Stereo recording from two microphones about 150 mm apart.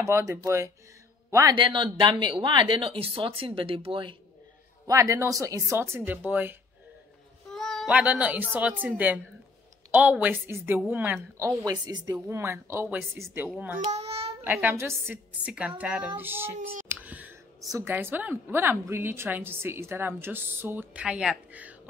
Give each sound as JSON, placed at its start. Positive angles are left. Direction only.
{"t": 0.0, "sound": "speech", "side_deg": -20}
{"t": 1.5, "sound": "speech", "side_deg": -35}
{"t": 4.8, "sound": "speech", "side_deg": -20}
{"t": 7.5, "sound": "a sound", "side_deg": 5}
{"t": 7.9, "sound": "a woman's voice", "side_deg": -10}
{"t": 13.9, "sound": "babbling", "side_deg": -40}
{"t": 14.4, "sound": "a woman's voice", "side_deg": -15}
{"t": 16.5, "sound": "speech", "side_deg": -55}
{"t": 16.9, "sound": "clicking", "side_deg": -10}
{"t": 17.7, "sound": "a woman's voice", "side_deg": -15}